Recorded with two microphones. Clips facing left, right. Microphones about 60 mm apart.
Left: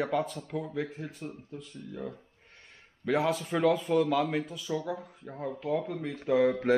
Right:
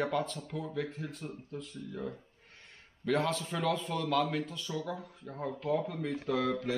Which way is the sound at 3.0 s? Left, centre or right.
Centre.